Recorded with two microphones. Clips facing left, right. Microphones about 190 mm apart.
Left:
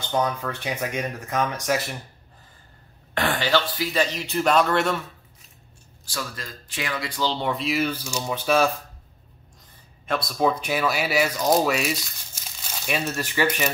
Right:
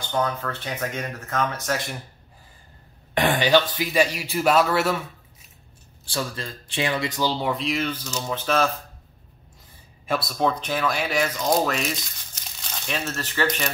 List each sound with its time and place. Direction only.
0.1 s speech: 15° left (ahead or behind)
3.2 s a man's voice: 15° right (ahead or behind)
6.0 s speech: 30° right (ahead or behind)
7.2 s speech: 10° right (ahead or behind); by 8.7 s 10° left (ahead or behind)
10.0 s speech: centre (ahead or behind)